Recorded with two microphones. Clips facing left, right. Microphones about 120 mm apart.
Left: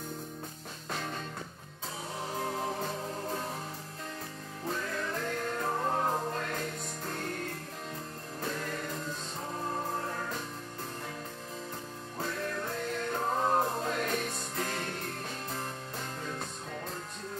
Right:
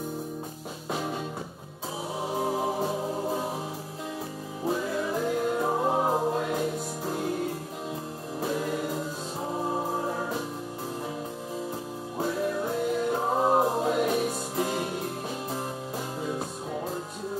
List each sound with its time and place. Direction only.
0.9 s music: 10° right (ahead or behind)
4.6 s music: 10° right (ahead or behind)
12.2 s music: 10° right (ahead or behind)
16.2 s music: 10° right (ahead or behind)